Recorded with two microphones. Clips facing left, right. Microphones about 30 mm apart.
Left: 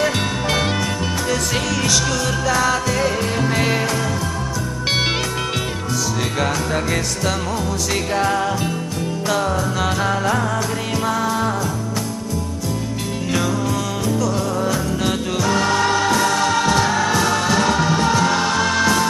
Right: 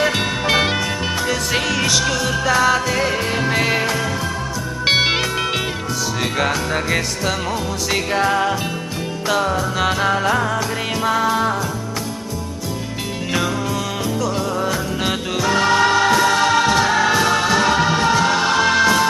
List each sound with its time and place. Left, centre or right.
0.0 s music: right
4.8 s music: right
6.4 s music: centre
14.2 s music: centre